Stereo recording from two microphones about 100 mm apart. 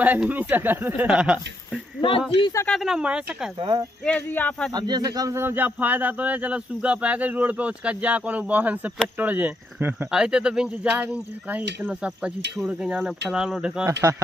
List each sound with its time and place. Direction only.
0.0 s speech: 15° right (ahead or behind)
2.0 s speech: 60° left (ahead or behind)
2.7 s speech: 5° right (ahead or behind)
3.5 s speech: 55° right (ahead or behind)
4.0 s speech: 15° left (ahead or behind)
4.7 s speech: 45° right (ahead or behind)
5.4 s speech: 20° right (ahead or behind)
10.1 s speech: 10° right (ahead or behind)